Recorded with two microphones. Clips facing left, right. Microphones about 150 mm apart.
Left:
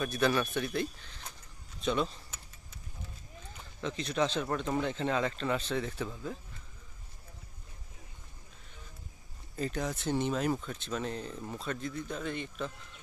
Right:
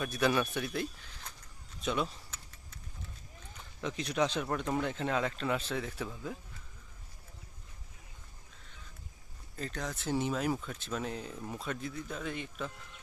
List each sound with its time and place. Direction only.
0.0 s speech: 10° right (ahead or behind)
3.8 s speech: 10° right (ahead or behind)
9.6 s speech: 5° left (ahead or behind)
10.0 s speech: 5° right (ahead or behind)